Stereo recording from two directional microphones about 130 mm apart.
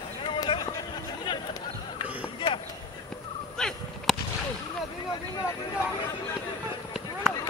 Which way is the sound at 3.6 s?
5° left (ahead or behind).